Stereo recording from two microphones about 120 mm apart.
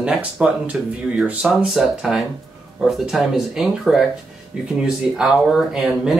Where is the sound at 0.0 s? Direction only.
10° right (ahead or behind).